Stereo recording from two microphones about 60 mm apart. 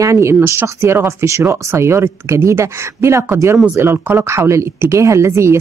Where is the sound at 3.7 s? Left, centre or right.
Right.